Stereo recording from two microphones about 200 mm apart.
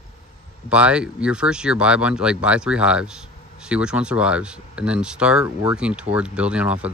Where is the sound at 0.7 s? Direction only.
5° right (ahead or behind).